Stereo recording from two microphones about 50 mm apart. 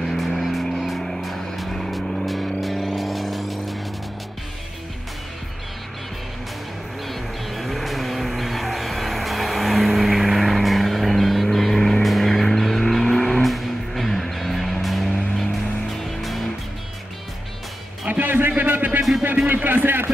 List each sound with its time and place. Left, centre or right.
0.0 s vehicle: centre
7.1 s vehicle: centre
16.2 s music: centre
18.0 s music: right